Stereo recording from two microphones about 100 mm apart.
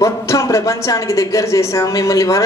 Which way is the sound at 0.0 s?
30° left (ahead or behind).